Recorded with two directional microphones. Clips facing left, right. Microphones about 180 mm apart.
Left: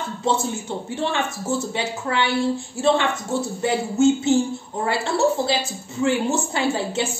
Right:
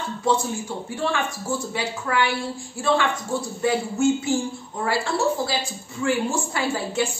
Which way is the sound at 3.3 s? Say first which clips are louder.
Even; 25° left (ahead or behind).